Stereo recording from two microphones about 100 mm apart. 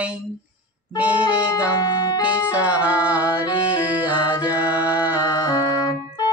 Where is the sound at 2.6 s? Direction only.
15° right (ahead or behind).